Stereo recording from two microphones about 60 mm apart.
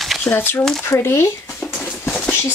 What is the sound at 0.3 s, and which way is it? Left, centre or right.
A woman's voice, left.